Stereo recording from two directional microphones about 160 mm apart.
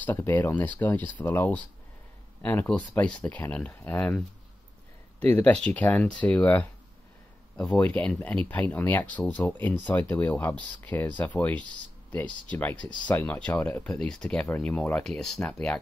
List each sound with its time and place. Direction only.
0.0 s speech: 10° left (ahead or behind)
5.2 s speech: 10° left (ahead or behind)